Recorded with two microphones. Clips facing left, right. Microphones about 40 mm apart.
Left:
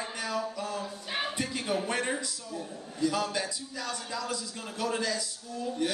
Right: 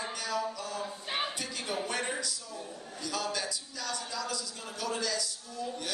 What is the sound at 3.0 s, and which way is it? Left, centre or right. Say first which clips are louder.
A man's voice: left 5 dB; left.